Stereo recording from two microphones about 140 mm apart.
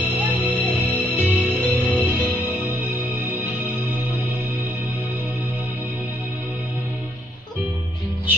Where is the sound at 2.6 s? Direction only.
10° right (ahead or behind).